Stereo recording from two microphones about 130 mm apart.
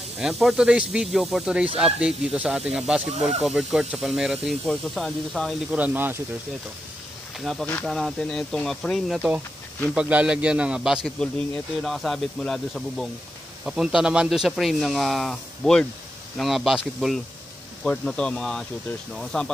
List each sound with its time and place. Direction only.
0.2 s speech: 5° right (ahead or behind)
3.2 s speech: 55° right (ahead or behind)
3.4 s speech: 5° right (ahead or behind)
5.7 s a man's voice: 15° right (ahead or behind)
7.3 s speech: centre (ahead or behind)
9.9 s a man's voice: 10° right (ahead or behind)